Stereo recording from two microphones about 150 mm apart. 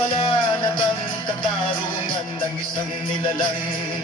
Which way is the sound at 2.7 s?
30° left (ahead or behind).